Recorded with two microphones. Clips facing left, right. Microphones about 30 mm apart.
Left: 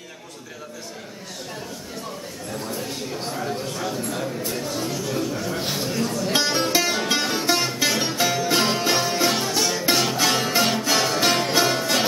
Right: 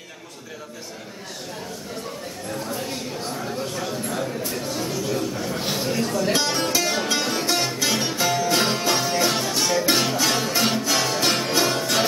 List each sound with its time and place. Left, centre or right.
3.3 s a sound: centre
5.9 s music: centre
6.4 s music: centre
10.1 s music: centre